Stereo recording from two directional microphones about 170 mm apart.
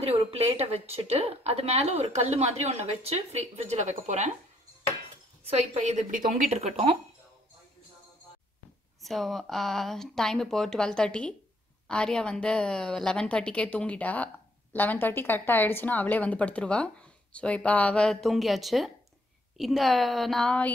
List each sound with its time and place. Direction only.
0.0 s a woman's voice: 35° right (ahead or behind)
5.5 s a woman's voice: 40° right (ahead or behind)
9.0 s a woman's voice: centre (ahead or behind)